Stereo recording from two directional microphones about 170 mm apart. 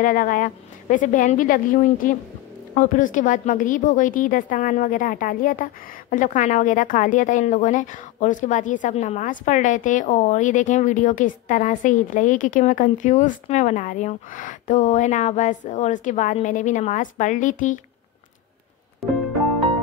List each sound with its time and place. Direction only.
0.0 s a woman's voice: 55° left (ahead or behind)
19.0 s music: centre (ahead or behind)